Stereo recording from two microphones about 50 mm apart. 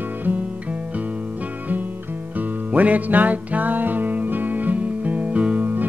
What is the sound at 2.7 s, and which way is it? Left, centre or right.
Music, right.